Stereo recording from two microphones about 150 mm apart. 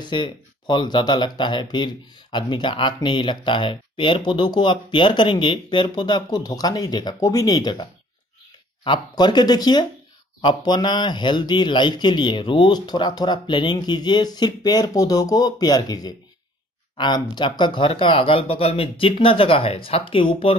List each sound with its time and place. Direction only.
0.0 s speech: 30° left (ahead or behind)
8.8 s speech: 30° left (ahead or behind)